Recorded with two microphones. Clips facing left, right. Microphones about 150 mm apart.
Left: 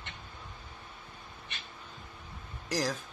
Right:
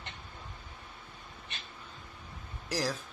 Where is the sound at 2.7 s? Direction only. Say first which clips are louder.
Left 1 dB; 5° right (ahead or behind).